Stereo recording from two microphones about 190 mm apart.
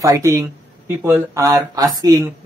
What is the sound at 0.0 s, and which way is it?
Speech, 15° right (ahead or behind).